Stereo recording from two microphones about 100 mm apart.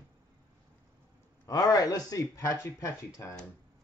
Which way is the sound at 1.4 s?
40° left (ahead or behind).